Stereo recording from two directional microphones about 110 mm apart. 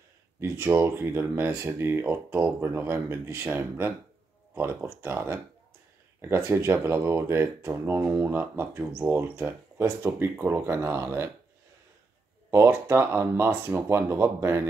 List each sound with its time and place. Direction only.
0.4 s speech: 20° right (ahead or behind)
12.4 s speech: 25° right (ahead or behind)